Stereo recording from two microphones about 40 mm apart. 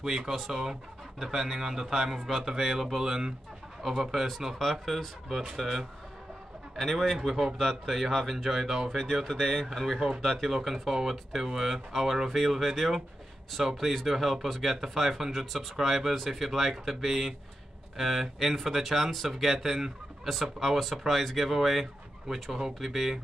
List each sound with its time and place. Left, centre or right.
0.0 s speech: centre
8.5 s speech: centre
9.2 s speech: centre
10.2 s speech: centre
10.5 s speech: centre